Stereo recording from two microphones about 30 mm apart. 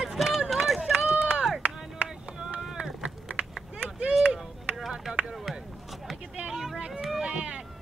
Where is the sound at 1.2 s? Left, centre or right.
Right.